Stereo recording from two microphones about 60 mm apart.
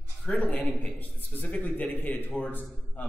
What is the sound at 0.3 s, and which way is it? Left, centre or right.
Mantra, centre.